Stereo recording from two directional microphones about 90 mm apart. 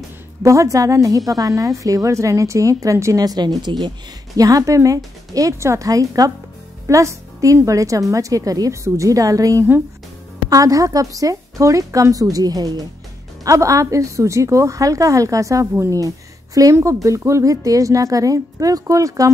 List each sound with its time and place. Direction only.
0.4 s a woman's voice: 35° right (ahead or behind)
16.7 s a woman's voice: 35° right (ahead or behind)